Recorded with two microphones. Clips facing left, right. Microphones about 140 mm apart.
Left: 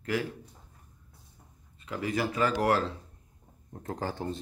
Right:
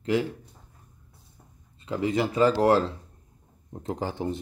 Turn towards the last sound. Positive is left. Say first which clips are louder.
# right 4 dB
turn(degrees=-15)  # may be behind; listen again after turning